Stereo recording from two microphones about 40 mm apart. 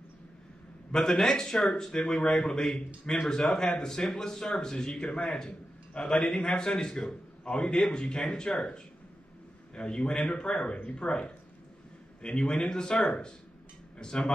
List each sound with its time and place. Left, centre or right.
0.9 s a man's voice: centre
7.4 s a man's voice: left
9.8 s a man's voice: left